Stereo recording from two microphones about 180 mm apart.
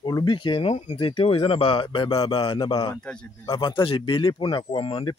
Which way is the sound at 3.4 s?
25° left (ahead or behind).